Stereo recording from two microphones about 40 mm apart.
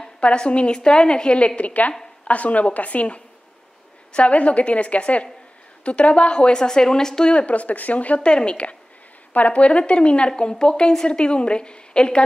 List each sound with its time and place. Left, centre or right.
0.2 s a woman's voice: left
8.3 s a woman's voice: left
11.1 s a woman's voice: left